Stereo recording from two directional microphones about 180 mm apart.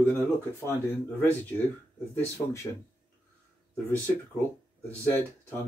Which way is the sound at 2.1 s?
15° left (ahead or behind).